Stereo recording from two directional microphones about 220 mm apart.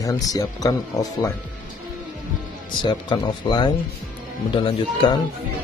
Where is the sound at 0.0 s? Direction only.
15° left (ahead or behind).